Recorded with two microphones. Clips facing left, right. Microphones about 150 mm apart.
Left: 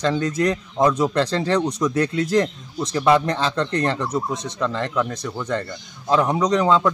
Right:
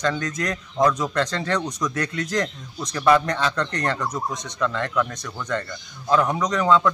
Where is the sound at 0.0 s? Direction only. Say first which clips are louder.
Left 5 dB; 30° left (ahead or behind).